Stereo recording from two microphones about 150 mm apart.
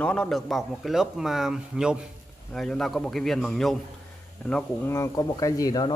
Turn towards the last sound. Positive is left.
turn(degrees=25)  # may be behind; listen again after turning